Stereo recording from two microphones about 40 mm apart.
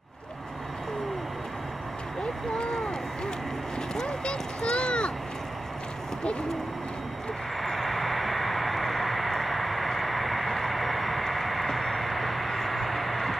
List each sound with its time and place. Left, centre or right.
2.5 s speech: centre
3.9 s a sound: left
7.6 s vehicle: centre